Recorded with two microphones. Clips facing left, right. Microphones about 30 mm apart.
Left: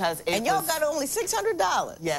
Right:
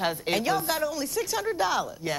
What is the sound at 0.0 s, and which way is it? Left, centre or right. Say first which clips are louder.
A woman's voice: left 1 dB; centre.